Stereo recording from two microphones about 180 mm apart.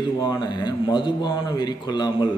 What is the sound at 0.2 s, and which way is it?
A man's voice, 25° left (ahead or behind).